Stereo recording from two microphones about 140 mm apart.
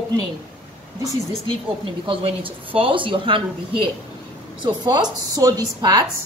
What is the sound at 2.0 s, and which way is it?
A woman's voice, 40° right (ahead or behind).